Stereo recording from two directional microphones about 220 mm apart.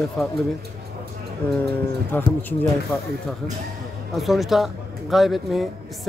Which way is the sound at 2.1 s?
10° left (ahead or behind).